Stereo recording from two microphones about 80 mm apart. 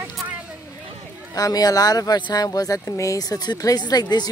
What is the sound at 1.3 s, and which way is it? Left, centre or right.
Speech, left.